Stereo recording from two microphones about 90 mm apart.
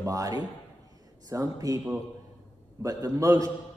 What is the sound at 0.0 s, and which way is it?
A man's voice, 40° right (ahead or behind).